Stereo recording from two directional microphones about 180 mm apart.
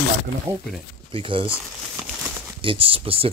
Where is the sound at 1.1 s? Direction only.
30° right (ahead or behind).